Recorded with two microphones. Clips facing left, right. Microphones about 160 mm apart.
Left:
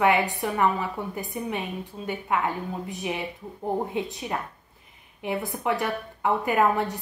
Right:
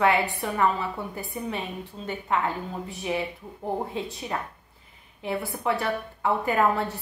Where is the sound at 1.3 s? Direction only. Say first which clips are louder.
Left 1 dB; 20° left (ahead or behind).